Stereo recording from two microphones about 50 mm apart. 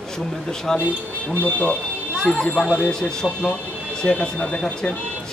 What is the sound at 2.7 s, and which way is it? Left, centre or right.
Speech, centre.